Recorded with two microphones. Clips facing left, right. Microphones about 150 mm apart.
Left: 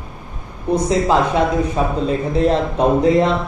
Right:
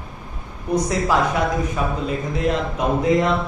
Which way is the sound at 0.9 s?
25° left (ahead or behind).